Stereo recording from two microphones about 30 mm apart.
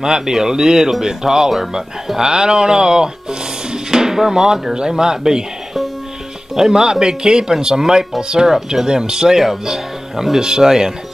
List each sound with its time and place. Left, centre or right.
0.0 s speech: centre
6.5 s speech: centre
7.8 s speech: centre
8.2 s speech: right
9.7 s speech: centre